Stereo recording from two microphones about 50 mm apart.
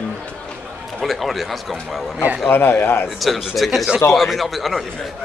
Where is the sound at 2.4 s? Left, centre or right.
Left.